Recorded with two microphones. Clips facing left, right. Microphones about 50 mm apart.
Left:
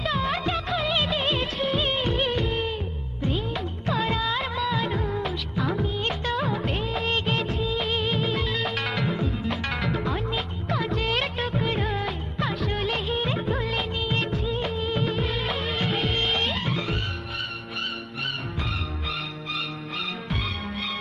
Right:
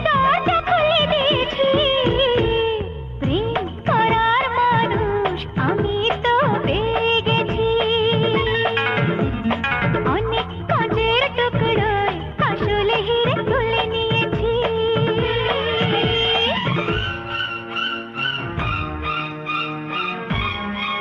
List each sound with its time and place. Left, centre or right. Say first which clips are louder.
0.0 s music: right 10 dB; right
2.3 s music of bollywood: right 9 dB; right
2.7 s music: right 8 dB; right
5.0 s music of bollywood: right 8 dB; right
7.4 s music of bollywood: right 9 dB; right
8.7 s music: right 8 dB; right
10.3 s music of bollywood: right 8 dB; right
12.5 s music: right 10 dB; right
13.7 s music of bollywood: right 8 dB; right
16.1 s music: right 6 dB; right